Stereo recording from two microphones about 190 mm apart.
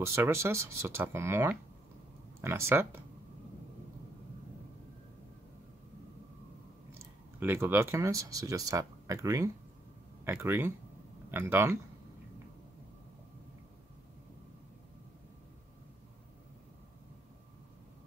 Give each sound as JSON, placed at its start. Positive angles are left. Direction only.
{"t": 0.0, "sound": "speech", "side_deg": -15}
{"t": 2.7, "sound": "speech", "side_deg": -10}
{"t": 6.9, "sound": "speech", "side_deg": -10}